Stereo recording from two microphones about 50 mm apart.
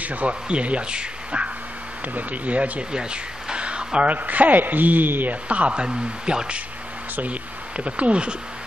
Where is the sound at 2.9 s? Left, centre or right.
Centre.